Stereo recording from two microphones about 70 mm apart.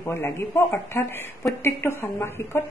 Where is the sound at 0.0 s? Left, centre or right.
Left.